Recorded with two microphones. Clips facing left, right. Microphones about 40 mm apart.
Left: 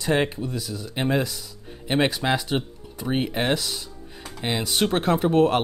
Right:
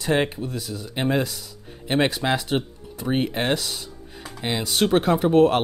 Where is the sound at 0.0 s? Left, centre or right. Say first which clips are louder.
Even; centre.